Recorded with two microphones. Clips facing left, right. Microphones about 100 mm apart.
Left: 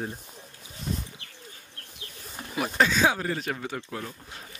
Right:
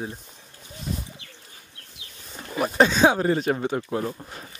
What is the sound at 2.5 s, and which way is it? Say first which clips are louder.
Speech: right 4 dB; 25° right (ahead or behind).